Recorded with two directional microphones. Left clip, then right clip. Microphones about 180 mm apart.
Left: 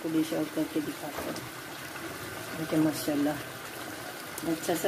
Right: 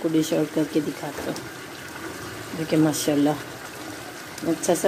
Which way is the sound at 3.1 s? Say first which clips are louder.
Right 8 dB; 45° right (ahead or behind).